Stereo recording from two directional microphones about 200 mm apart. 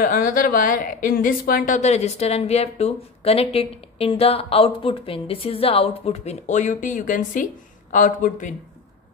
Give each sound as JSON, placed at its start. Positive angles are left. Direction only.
{"t": 0.0, "sound": "a woman's voice", "side_deg": 45}